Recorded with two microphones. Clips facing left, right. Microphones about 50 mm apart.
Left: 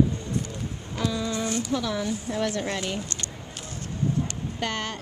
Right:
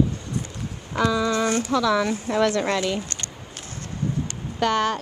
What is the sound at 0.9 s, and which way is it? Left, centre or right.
A woman's voice, right.